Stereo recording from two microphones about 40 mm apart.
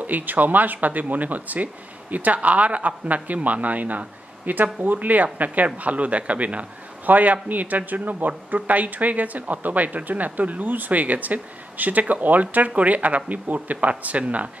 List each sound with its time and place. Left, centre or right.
0.0 s speech: right